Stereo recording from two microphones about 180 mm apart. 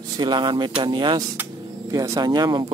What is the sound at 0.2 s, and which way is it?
Speech, 25° right (ahead or behind).